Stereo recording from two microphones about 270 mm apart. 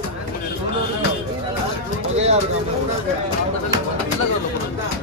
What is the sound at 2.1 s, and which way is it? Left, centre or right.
Bird, right.